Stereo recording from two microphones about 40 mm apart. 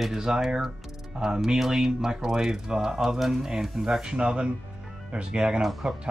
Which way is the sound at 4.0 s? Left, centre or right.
Right.